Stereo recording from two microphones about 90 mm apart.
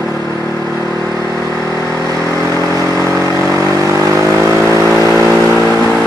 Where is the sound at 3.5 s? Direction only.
35° right (ahead or behind).